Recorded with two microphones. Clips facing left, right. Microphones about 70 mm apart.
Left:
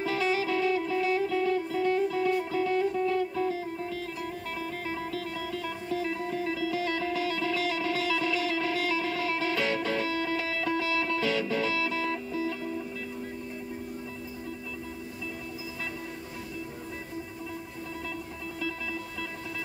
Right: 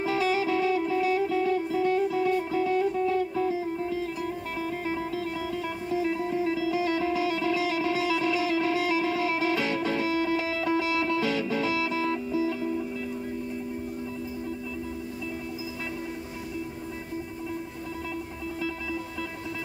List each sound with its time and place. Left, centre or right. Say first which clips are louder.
0.0 s music: right 2 dB; right
4.8 s music: right 4 dB; right